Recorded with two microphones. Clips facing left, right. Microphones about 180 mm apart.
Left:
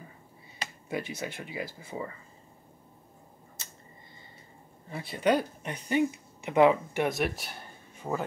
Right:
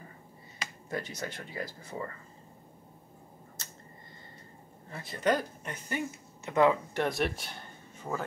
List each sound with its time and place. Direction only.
0.8 s speech: 10° left (ahead or behind)
4.9 s speech: 15° left (ahead or behind)
7.2 s a man's voice: 5° left (ahead or behind)
8.0 s speech: 20° left (ahead or behind)